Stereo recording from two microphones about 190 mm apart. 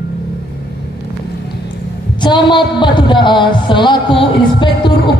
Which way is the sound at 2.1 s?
25° left (ahead or behind).